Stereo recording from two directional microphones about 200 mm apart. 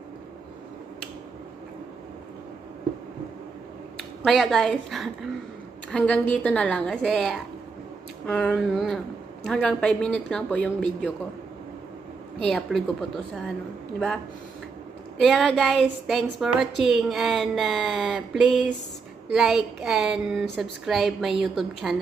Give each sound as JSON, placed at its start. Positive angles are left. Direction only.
{"t": 4.2, "sound": "a woman's voice", "side_deg": 0}
{"t": 12.4, "sound": "a woman's voice", "side_deg": 0}
{"t": 13.9, "sound": "a woman's voice", "side_deg": 5}